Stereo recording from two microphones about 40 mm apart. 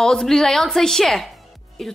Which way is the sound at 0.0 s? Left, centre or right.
Centre.